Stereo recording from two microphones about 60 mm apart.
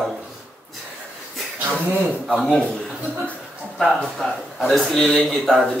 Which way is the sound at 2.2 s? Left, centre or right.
Centre.